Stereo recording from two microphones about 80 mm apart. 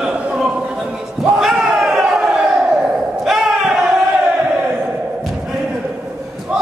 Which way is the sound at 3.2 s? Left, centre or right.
Centre.